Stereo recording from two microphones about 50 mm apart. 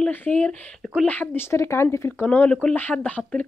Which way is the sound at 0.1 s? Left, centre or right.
Left.